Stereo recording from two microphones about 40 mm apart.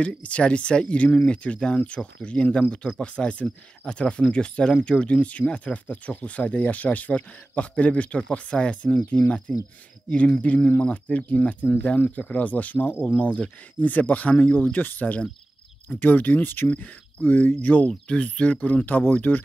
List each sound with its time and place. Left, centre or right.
0.2 s speech: left
13.2 s speech: left
17.8 s speech: left